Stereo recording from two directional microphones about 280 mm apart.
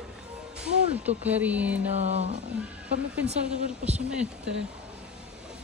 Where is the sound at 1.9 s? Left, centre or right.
Right.